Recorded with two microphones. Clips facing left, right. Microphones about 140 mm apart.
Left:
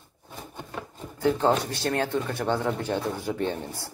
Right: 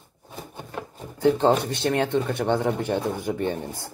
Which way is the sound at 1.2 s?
20° right (ahead or behind).